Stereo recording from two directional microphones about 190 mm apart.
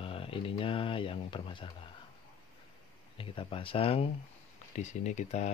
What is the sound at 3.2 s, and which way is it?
Speech, 30° left (ahead or behind).